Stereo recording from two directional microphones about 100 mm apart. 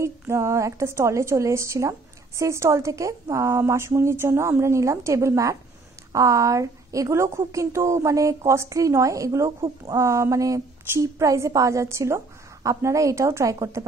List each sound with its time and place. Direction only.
0.0 s a woman's voice: 30° right (ahead or behind)